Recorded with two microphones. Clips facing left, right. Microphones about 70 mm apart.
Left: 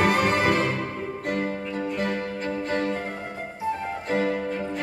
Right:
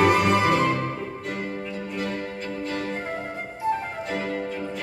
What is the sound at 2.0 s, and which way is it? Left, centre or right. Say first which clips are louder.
Music: left 2 dB; left.